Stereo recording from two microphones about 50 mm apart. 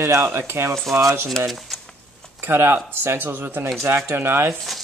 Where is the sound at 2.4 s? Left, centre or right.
Right.